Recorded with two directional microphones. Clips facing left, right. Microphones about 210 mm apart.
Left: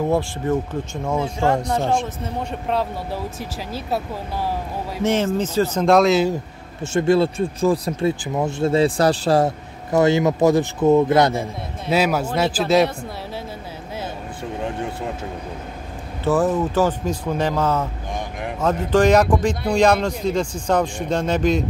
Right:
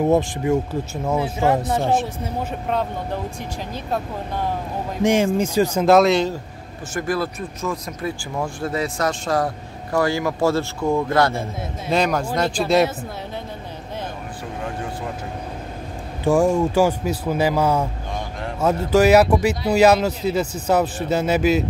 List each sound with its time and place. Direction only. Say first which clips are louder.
0.0 s speech: right 3 dB; 15° right (ahead or behind)
1.0 s speech: right 1 dB; 5° right (ahead or behind)
5.0 s speech: right 2 dB; 10° right (ahead or behind)
6.8 s speech: left 7 dB; 25° left (ahead or behind)
11.9 s speech: left 1 dB; 5° left (ahead or behind)
16.3 s speech: right 2 dB; 10° right (ahead or behind)